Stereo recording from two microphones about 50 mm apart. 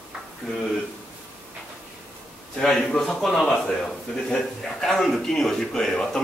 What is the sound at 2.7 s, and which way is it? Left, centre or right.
Speech, centre.